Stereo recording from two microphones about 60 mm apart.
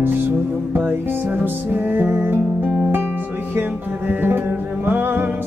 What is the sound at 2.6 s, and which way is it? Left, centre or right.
Music, centre.